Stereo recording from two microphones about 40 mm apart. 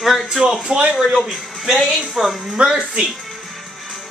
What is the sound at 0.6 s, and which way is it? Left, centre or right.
Speech, centre.